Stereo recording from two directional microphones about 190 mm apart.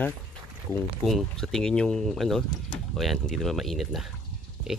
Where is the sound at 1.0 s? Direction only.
Centre (ahead or behind).